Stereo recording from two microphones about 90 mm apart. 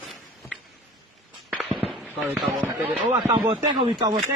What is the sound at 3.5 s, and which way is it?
Speech, 75° right (ahead or behind).